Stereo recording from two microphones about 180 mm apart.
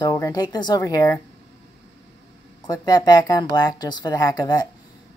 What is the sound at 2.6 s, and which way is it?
Speech, 20° left (ahead or behind).